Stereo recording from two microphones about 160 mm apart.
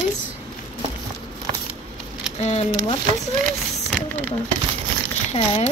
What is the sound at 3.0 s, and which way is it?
Speech, 50° right (ahead or behind).